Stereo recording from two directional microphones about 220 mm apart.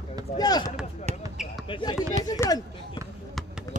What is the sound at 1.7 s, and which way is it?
Speech, 20° left (ahead or behind).